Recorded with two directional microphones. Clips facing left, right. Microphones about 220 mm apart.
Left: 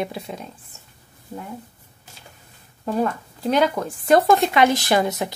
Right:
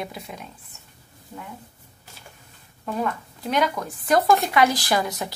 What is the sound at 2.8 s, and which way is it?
Speech, 30° left (ahead or behind).